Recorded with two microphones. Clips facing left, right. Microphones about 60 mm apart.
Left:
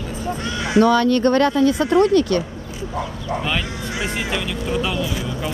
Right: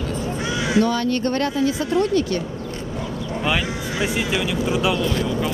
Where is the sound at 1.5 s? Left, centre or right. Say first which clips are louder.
Left 4 dB; left.